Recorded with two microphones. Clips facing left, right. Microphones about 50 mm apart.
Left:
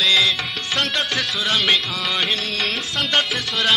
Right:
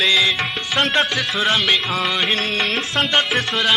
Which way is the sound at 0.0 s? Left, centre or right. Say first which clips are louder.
Right 1 dB; centre.